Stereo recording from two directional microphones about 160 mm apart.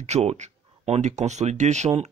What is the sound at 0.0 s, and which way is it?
Speech, 45° right (ahead or behind).